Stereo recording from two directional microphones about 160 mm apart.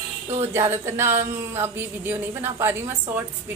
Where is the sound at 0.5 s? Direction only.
15° right (ahead or behind).